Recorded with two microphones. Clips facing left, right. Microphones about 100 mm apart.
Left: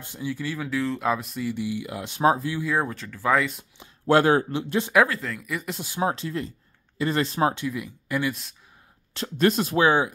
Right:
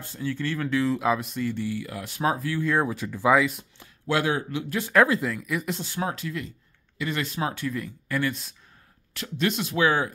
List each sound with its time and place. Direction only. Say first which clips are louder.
0.0 s speech: right 1 dB; 15° left (ahead or behind)
1.5 s speech: left 1 dB; 15° left (ahead or behind)
2.6 s speech: right 1 dB; centre (ahead or behind)
3.0 s speech: right 3 dB; 15° right (ahead or behind)
3.3 s speech: right 2 dB; centre (ahead or behind)
4.1 s speech: left 6 dB; 45° left (ahead or behind)
4.5 s speech: left 3 dB; 30° left (ahead or behind)
5.0 s speech: right 3 dB; 15° right (ahead or behind)
5.3 s speech: right 2 dB; centre (ahead or behind)
5.8 s speech: left 2 dB; 15° left (ahead or behind)
6.0 s speech: left 7 dB; 30° left (ahead or behind)
7.5 s speech: even; 15° left (ahead or behind)
9.1 s speech: left 5 dB; 35° left (ahead or behind)
9.8 s speech: left 2 dB; 20° left (ahead or behind)